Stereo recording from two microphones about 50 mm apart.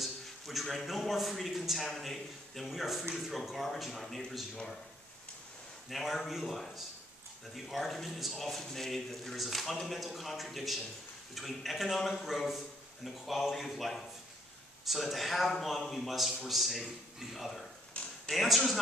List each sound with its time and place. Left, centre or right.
0.0 s a man's voice: centre
5.9 s speech: centre
17.9 s a sound: left
18.3 s speech: centre